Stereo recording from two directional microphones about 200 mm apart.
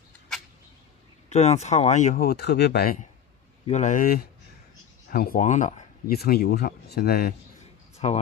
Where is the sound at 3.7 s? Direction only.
35° left (ahead or behind).